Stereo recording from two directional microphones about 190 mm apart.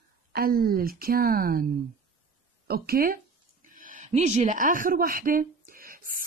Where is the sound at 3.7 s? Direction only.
45° right (ahead or behind).